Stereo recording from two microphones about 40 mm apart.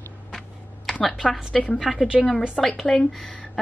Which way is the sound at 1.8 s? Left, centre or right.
Centre.